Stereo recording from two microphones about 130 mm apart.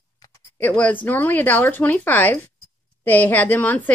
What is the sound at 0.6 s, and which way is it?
A woman's voice, 10° left (ahead or behind).